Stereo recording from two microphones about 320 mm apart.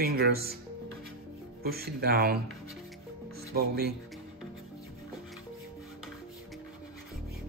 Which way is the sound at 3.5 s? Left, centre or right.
Right.